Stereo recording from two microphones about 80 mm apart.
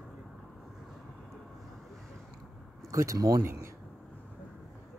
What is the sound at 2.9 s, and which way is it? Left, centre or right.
Speech, right.